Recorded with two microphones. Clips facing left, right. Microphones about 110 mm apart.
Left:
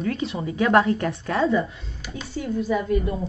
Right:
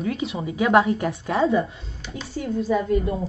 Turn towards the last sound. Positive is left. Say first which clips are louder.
# right 1 dB
turn(degrees=-30)  # may be behind; listen again after turning